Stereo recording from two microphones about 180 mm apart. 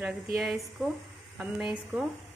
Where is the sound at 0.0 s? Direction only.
5° right (ahead or behind).